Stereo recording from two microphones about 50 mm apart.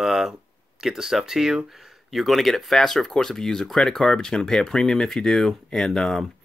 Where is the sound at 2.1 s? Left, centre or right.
Centre.